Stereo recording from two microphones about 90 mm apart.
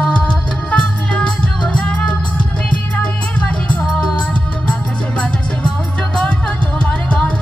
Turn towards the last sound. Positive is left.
turn(degrees=10)  # may be behind; listen again after turning